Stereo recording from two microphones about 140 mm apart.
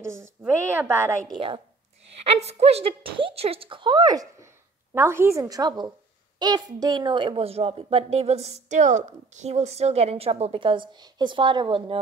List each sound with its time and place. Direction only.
0.0 s a woman's voice: 20° right (ahead or behind)
1.2 s a woman's voice: 30° right (ahead or behind)
2.3 s a woman's voice: 50° right (ahead or behind)